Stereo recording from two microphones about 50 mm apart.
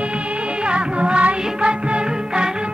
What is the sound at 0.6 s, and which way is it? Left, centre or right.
Music, right.